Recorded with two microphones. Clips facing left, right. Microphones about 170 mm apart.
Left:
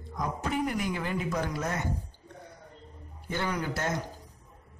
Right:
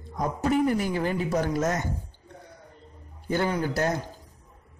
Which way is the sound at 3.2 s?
35° right (ahead or behind).